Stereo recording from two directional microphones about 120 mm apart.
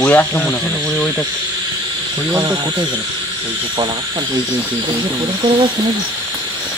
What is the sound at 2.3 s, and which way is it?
Speech, 35° right (ahead or behind).